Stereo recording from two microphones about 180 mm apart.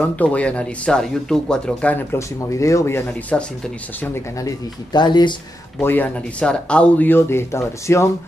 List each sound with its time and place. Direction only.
0.0 s speech: 10° left (ahead or behind); by 5.3 s 25° left (ahead or behind)
5.8 s speech: 10° left (ahead or behind)